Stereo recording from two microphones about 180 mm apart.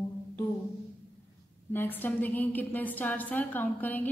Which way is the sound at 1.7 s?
10° left (ahead or behind).